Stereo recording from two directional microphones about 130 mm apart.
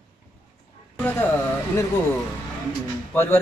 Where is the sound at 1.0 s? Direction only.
20° left (ahead or behind).